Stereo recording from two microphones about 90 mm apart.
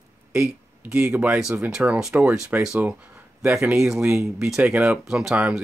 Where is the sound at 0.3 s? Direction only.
10° right (ahead or behind).